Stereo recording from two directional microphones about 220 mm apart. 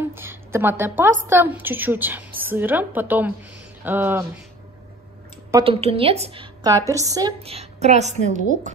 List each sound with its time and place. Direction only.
0.1 s a woman's voice: 10° right (ahead or behind)
5.6 s a woman's voice: 25° right (ahead or behind)
7.3 s a woman's voice: 25° right (ahead or behind)